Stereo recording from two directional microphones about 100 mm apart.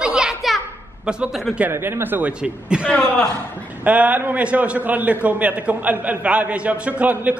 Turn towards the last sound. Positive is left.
turn(degrees=-15)  # may be behind; listen again after turning